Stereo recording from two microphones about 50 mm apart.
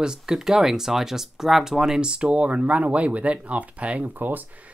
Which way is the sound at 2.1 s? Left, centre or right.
Right.